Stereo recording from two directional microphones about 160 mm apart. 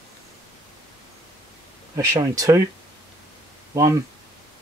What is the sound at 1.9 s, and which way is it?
Speech, 20° right (ahead or behind).